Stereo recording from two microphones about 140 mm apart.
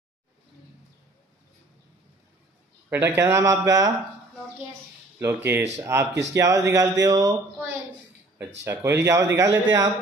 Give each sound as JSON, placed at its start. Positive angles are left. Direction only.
{"t": 2.9, "sound": "speech", "side_deg": -15}
{"t": 5.2, "sound": "speech", "side_deg": -15}
{"t": 8.4, "sound": "speech", "side_deg": -15}